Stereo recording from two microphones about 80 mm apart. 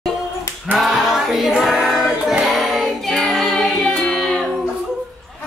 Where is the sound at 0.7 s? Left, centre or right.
Centre.